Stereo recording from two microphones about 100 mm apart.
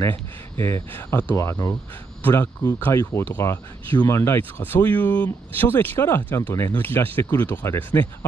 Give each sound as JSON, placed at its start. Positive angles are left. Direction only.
{"t": 0.0, "sound": "speech", "side_deg": 25}